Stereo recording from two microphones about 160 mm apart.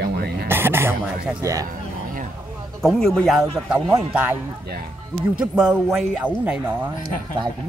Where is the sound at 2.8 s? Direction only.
Centre (ahead or behind).